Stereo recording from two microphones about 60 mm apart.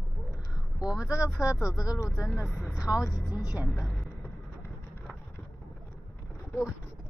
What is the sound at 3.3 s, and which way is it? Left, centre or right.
Speech, centre.